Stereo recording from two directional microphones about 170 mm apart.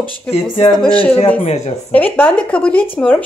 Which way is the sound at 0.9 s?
35° left (ahead or behind).